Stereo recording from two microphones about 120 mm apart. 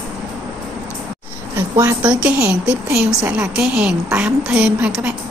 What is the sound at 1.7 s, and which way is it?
Speech, 30° right (ahead or behind).